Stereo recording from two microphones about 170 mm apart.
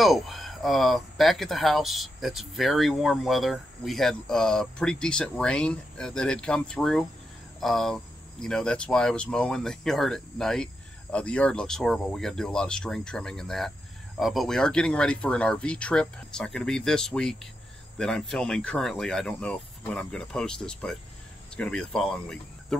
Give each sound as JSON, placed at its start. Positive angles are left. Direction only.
{"t": 0.0, "sound": "speech", "side_deg": 0}